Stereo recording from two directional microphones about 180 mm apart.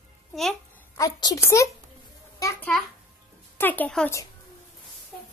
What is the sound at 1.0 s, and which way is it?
Speech, 20° left (ahead or behind).